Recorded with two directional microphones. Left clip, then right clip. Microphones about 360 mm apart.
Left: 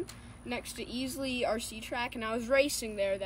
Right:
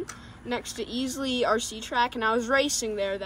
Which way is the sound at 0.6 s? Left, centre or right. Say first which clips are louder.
Right 5 dB; centre.